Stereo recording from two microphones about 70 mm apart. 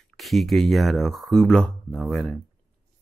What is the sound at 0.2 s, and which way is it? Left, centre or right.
Speech, centre.